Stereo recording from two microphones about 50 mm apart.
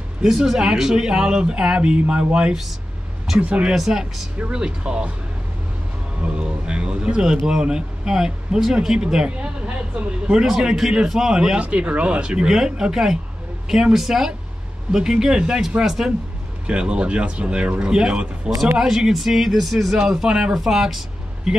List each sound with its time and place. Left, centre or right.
0.2 s speech: centre
3.7 s speech: centre
4.5 s speech: centre
6.2 s speech: right
9.7 s speech: right
10.3 s speech: centre
11.6 s speech: right; by 16.1 s centre
16.6 s speech: centre
18.8 s speech: centre